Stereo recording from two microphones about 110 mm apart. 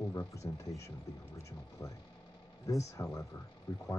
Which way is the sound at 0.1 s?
30° left (ahead or behind).